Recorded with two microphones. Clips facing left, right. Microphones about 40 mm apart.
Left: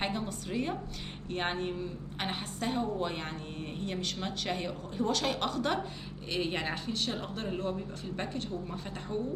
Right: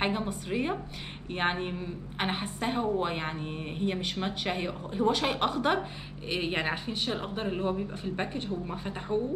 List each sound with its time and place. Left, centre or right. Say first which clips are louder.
0.0 s a woman's voice: right 4 dB; right